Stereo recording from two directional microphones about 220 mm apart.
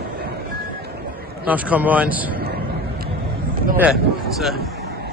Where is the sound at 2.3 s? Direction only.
45° right (ahead or behind).